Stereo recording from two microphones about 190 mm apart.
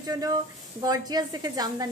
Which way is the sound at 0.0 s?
20° right (ahead or behind).